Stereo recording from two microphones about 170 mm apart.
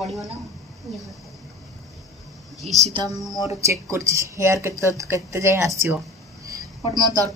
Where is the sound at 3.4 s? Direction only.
20° right (ahead or behind).